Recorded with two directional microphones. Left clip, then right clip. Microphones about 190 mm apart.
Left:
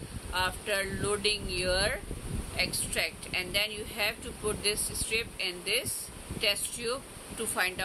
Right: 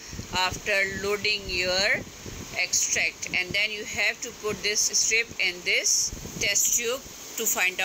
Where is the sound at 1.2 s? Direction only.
45° left (ahead or behind).